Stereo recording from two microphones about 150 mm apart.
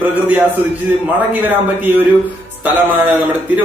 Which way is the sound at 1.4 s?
15° right (ahead or behind).